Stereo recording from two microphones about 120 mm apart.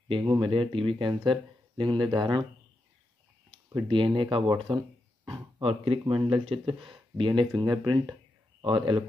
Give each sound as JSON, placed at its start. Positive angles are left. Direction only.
{"t": 0.2, "sound": "speech", "side_deg": -40}
{"t": 3.4, "sound": "speech", "side_deg": -45}